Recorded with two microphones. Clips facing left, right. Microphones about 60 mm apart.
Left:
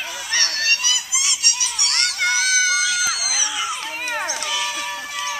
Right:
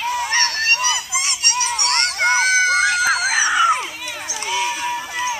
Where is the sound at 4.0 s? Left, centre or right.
Left.